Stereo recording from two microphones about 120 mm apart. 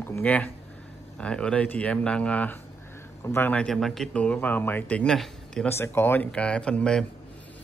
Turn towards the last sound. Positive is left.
turn(degrees=5)  # may be behind; listen again after turning